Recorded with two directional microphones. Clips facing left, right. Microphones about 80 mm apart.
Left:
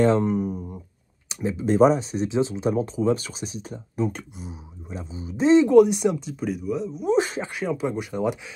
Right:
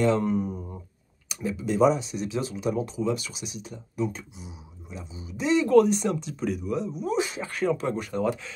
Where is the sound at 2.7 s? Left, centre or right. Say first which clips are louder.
Left 1 dB; left.